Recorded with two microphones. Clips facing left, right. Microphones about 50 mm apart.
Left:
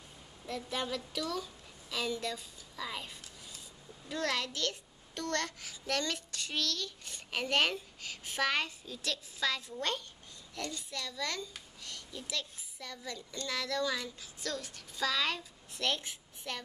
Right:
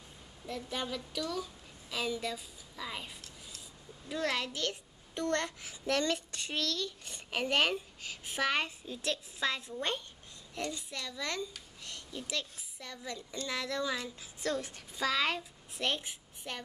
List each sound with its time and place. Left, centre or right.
0.5 s a woman's voice: centre